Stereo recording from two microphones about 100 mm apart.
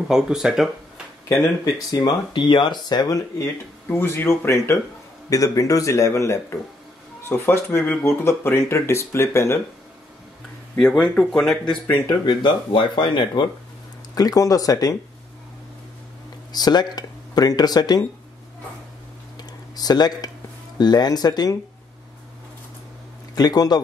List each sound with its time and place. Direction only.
0.1 s speech: 5° right (ahead or behind)
1.3 s speech: 35° left (ahead or behind)
3.9 s speech: 25° left (ahead or behind)
10.8 s speech: 5° left (ahead or behind)
12.3 s speech: 50° left (ahead or behind)
14.1 s speech: 35° left (ahead or behind)
16.5 s speech: 45° left (ahead or behind)
19.3 s a sound: 40° left (ahead or behind)
20.7 s speech: 45° left (ahead or behind)
23.3 s speech: 40° left (ahead or behind)